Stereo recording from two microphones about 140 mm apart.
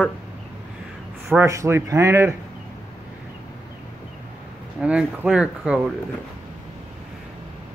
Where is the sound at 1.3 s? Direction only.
20° right (ahead or behind).